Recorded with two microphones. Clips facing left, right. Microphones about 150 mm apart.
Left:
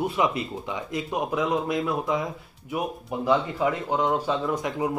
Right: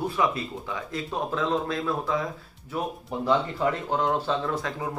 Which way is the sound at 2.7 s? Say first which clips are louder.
Left 1 dB; 5° left (ahead or behind).